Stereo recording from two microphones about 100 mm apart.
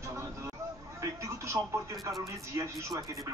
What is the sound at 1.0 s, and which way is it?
Television, 30° right (ahead or behind).